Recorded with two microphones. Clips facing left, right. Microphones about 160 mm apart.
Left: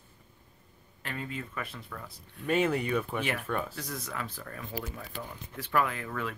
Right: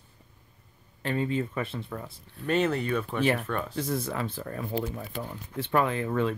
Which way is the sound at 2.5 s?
10° left (ahead or behind).